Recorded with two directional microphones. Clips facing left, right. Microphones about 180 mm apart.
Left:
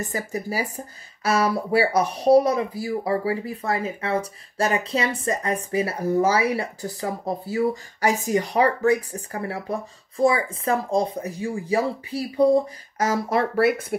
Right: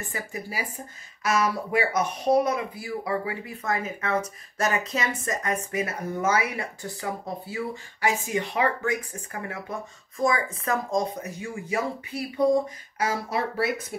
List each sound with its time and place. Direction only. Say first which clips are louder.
0.0 s speech: left 6 dB; 40° left (ahead or behind); by 13.9 s 60° left (ahead or behind)